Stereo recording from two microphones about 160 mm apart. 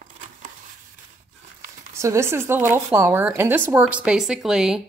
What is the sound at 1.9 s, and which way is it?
Speech, 15° right (ahead or behind).